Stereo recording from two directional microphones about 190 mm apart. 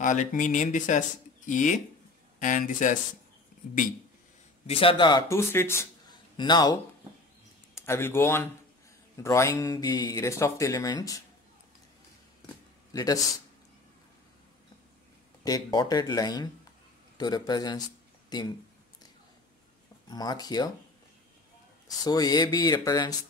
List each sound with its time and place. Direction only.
0.0 s speech: 40° left (ahead or behind)
4.6 s speech: 30° left (ahead or behind)
12.9 s speech: 20° left (ahead or behind)
15.4 s speech: 20° left (ahead or behind)
20.1 s speech: 20° left (ahead or behind)
21.8 s speech: 20° left (ahead or behind)